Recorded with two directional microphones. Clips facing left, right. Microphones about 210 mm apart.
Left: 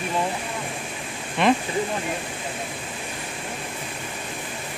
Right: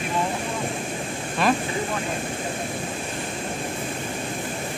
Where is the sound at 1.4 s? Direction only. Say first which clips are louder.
Left 2 dB; 20° left (ahead or behind).